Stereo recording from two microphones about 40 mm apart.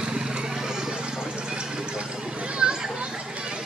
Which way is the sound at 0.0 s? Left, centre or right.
Right.